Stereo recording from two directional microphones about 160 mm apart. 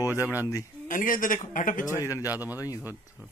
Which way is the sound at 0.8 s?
55° left (ahead or behind).